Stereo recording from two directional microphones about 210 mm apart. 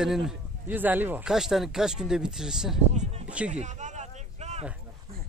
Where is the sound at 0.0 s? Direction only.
Centre (ahead or behind).